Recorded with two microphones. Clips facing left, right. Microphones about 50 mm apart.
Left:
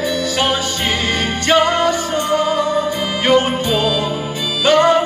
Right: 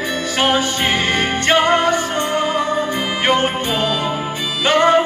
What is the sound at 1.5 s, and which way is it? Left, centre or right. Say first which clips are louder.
Music: left 1 dB; right.